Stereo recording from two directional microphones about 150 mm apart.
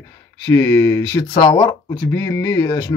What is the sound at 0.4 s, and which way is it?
Speech, 15° left (ahead or behind).